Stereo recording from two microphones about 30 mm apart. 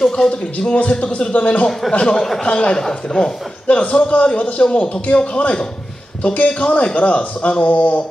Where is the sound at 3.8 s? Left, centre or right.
Left.